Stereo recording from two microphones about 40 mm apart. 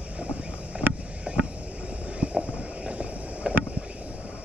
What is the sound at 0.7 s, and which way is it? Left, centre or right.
Vehicle, right.